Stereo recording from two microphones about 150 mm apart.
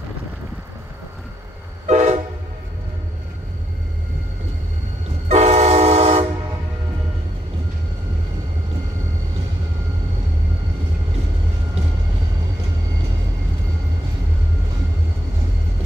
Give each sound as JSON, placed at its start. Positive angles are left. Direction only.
{"t": 1.9, "sound": "train", "side_deg": -50}
{"t": 5.3, "sound": "train", "side_deg": -45}